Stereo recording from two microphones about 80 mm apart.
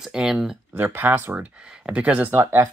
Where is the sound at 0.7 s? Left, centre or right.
Right.